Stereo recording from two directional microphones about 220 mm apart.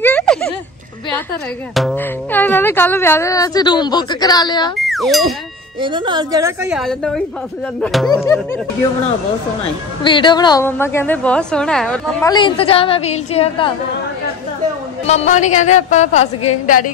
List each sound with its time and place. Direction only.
0.0 s a sound: 5° left (ahead or behind)
1.8 s speech: 5° left (ahead or behind); by 4.7 s 20° left (ahead or behind)
4.7 s speech: centre (ahead or behind)
5.8 s a woman's voice: 20° right (ahead or behind)
6.7 s a woman's voice: centre (ahead or behind)
8.1 s speech: 15° left (ahead or behind)
10.0 s speech: 20° left (ahead or behind); by 12.0 s 5° left (ahead or behind)
12.2 s a woman's voice: 20° left (ahead or behind)
15.0 s a woman's voice: 30° left (ahead or behind)